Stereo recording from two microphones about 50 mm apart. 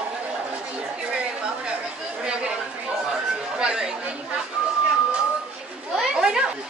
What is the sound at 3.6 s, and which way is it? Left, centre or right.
Chatter, centre.